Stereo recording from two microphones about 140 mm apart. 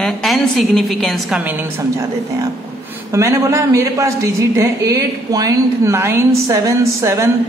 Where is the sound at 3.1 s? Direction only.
20° right (ahead or behind).